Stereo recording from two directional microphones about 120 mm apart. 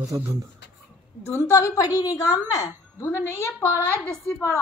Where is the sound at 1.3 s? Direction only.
20° left (ahead or behind).